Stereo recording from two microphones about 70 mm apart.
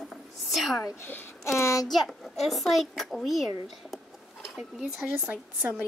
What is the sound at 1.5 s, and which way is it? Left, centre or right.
Speech, left.